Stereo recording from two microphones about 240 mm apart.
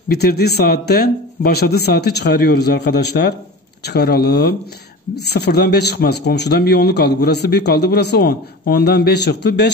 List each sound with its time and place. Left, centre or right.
0.1 s a man's voice: left